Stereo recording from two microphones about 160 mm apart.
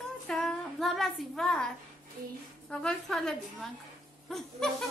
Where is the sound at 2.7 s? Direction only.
5° left (ahead or behind).